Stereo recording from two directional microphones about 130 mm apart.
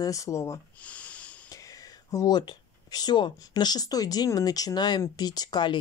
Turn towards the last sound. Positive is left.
turn(degrees=35)  # may be behind; listen again after turning